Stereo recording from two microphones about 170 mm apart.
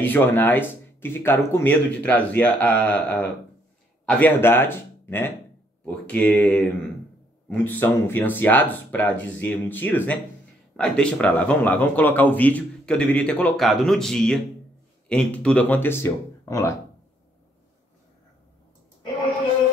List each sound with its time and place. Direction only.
0.0 s a man's voice: 10° left (ahead or behind)